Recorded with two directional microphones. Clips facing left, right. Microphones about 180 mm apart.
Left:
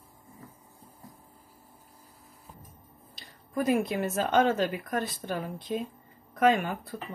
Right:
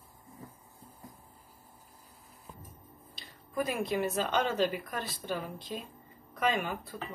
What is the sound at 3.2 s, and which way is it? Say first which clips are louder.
A woman's voice: left 3 dB; 45° left (ahead or behind).